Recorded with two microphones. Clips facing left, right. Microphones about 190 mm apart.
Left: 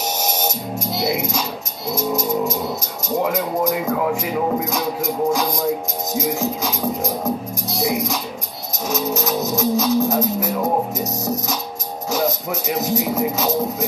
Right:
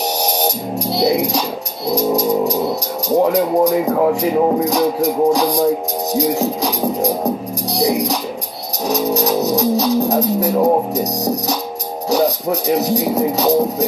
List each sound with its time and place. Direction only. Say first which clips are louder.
0.2 s speech: right 5 dB; 35° right (ahead or behind)
1.9 s music: right 6 dB; 35° right (ahead or behind)
3.2 s speech: right 7 dB; 35° right (ahead or behind)
6.1 s music: right 5 dB; 35° right (ahead or behind)
12.1 s speech: right 6 dB; 35° right (ahead or behind)